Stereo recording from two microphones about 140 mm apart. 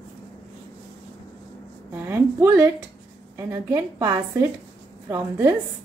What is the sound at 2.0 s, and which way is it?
A woman's voice, 20° right (ahead or behind).